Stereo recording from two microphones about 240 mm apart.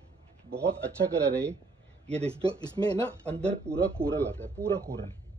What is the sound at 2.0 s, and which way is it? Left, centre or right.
Speech, centre.